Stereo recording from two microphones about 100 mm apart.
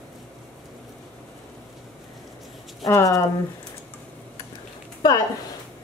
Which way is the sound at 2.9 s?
30° left (ahead or behind).